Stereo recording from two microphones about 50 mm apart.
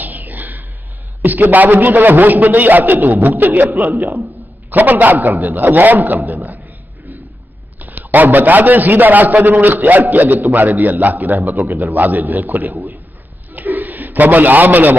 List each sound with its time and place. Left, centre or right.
0.0 s throat clearing: right
1.2 s a man's voice: right
7.8 s a man's voice: right
13.5 s a sound: right